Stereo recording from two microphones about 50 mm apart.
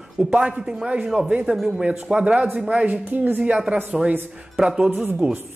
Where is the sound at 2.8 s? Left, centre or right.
Right.